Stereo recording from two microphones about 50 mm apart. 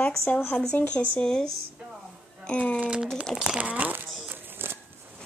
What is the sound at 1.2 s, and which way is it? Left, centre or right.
Speech, centre.